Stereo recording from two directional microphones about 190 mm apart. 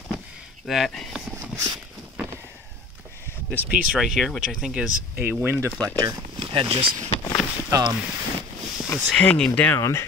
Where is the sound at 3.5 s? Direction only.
5° right (ahead or behind).